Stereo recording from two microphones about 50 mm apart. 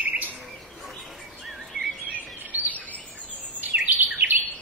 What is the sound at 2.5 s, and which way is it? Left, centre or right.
Bird vocalization, right.